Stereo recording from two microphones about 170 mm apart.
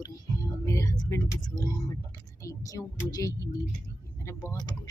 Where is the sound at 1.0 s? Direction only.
20° left (ahead or behind).